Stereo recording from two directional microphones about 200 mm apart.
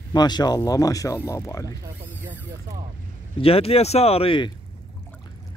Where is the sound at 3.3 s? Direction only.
30° left (ahead or behind).